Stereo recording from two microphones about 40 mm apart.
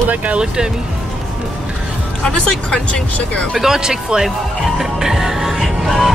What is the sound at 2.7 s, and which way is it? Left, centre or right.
Speech, left.